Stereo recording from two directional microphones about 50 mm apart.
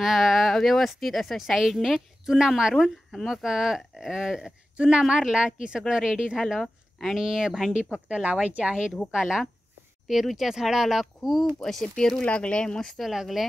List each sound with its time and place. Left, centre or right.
0.0 s speech: centre
6.6 s speech: centre
7.2 s speech: centre
7.9 s speech: right
9.1 s speech: centre
11.6 s speech: centre
12.8 s speech: centre